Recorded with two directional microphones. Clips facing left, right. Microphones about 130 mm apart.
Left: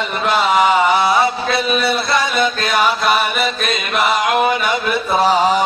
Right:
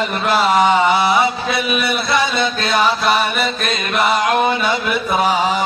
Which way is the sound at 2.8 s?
Centre (ahead or behind).